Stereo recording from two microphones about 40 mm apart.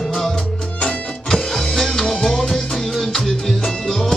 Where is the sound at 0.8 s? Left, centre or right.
Centre.